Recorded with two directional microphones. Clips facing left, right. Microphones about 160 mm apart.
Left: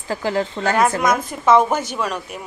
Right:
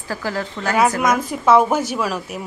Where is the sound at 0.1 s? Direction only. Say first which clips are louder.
Left 4 dB; 20° left (ahead or behind).